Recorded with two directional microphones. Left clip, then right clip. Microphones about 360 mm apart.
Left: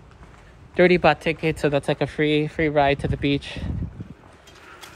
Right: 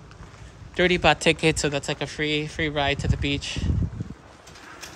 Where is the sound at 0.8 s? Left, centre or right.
Centre.